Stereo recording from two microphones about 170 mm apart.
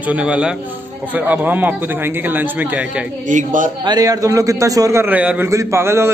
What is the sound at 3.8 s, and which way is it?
A man's voice, 25° right (ahead or behind).